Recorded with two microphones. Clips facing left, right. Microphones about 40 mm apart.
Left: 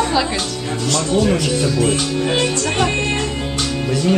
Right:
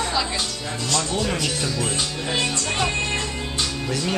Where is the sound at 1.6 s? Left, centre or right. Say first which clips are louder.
Left 9 dB; centre.